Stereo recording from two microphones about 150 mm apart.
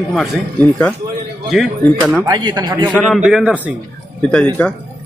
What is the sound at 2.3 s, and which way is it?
Speech, 30° right (ahead or behind).